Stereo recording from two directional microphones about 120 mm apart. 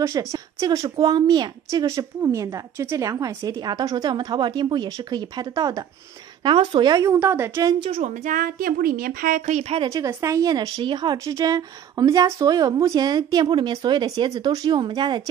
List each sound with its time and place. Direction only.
0.0 s a woman's voice: 25° right (ahead or behind)
6.4 s a woman's voice: 45° right (ahead or behind)
7.2 s a woman's voice: 20° right (ahead or behind)
8.0 s speech: 85° right
9.3 s speech: 70° right (ahead or behind)
9.8 s a woman's voice: 25° right (ahead or behind)